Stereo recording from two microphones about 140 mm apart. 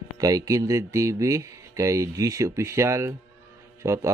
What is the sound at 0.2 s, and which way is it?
Speech, 25° right (ahead or behind).